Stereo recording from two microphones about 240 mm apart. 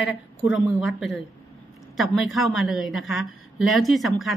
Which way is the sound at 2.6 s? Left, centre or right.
Centre.